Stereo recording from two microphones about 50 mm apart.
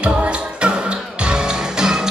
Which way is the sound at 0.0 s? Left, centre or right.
Right.